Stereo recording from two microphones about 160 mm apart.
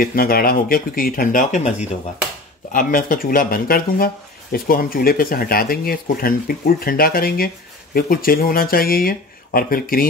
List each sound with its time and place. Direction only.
0.0 s speech: 65° left (ahead or behind); by 1.9 s 45° left (ahead or behind)
2.7 s speech: 60° left (ahead or behind)